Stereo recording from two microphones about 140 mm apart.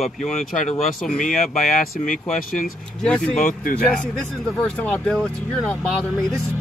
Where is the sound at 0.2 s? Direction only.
55° left (ahead or behind).